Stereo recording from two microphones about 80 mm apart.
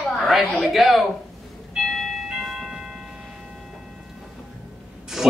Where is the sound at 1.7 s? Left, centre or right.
Centre.